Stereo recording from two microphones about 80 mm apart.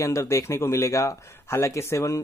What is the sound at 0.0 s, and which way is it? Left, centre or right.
Speech, left.